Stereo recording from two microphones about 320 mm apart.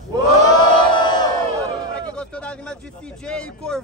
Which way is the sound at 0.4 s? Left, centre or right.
Centre.